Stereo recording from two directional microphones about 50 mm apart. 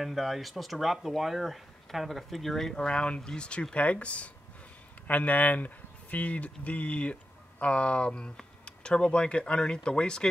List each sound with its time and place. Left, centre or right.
0.0 s speech: centre